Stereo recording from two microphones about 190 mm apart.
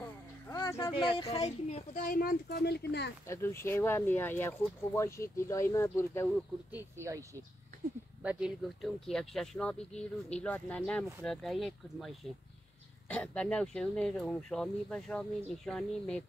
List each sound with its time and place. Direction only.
0.5 s a sound: 15° left (ahead or behind)
0.8 s speech: 25° left (ahead or behind)
2.0 s speech: 50° left (ahead or behind)
3.3 s speech: 15° left (ahead or behind)
7.0 s speech: 15° right (ahead or behind); by 16.3 s 5° left (ahead or behind)